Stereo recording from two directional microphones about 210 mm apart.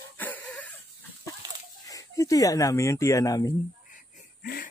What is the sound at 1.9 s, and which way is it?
Speech, 15° left (ahead or behind).